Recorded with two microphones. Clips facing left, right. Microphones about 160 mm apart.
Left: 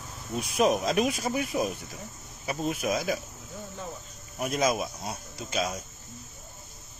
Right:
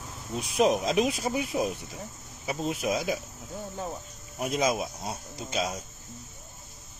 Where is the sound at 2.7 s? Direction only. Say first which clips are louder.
Even; 25° right (ahead or behind).